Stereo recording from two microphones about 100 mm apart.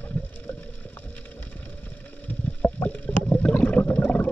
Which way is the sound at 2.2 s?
15° left (ahead or behind).